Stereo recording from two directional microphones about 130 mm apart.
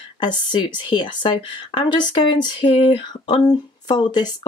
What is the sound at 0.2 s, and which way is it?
A woman's voice, 35° left (ahead or behind).